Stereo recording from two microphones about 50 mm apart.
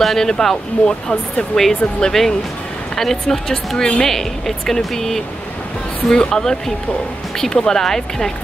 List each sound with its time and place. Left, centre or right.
0.0 s speech: centre